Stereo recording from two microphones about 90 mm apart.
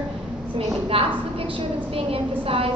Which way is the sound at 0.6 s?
90° right.